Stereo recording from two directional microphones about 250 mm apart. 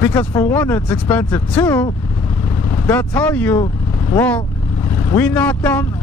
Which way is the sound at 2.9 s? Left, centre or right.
Centre.